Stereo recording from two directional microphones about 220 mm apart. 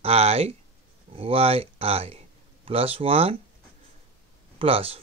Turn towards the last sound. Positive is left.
turn(degrees=-25)  # may be behind; listen again after turning